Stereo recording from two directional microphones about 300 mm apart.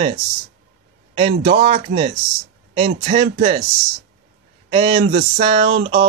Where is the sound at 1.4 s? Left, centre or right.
Right.